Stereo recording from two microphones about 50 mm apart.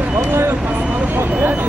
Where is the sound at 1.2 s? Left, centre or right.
Right.